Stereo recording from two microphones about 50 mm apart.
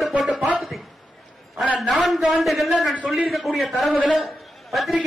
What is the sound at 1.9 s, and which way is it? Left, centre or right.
A man's voice, centre.